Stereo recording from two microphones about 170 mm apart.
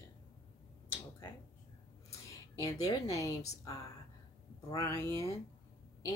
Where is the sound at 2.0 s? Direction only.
20° left (ahead or behind).